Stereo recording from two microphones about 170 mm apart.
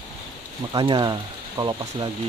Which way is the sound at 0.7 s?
25° right (ahead or behind).